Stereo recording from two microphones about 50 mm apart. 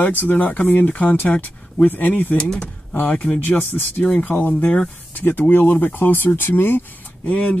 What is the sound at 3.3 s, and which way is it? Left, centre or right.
Speech, left.